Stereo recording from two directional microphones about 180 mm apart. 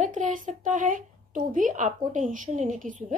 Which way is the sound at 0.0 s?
45° right (ahead or behind).